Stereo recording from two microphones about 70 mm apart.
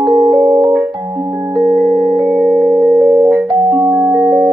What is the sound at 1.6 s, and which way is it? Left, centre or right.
Music, centre.